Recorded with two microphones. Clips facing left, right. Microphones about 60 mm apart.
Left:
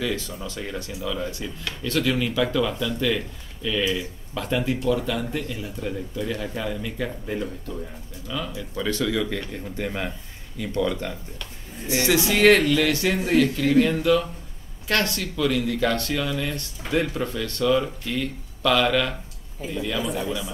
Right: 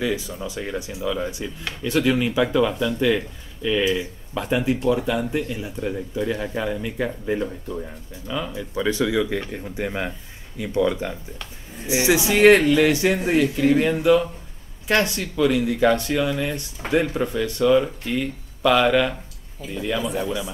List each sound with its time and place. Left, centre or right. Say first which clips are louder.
0.0 s speech: right 3 dB; centre